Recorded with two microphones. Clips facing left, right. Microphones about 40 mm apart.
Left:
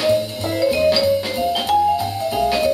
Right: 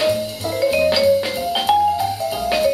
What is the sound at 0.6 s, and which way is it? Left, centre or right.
Music, right.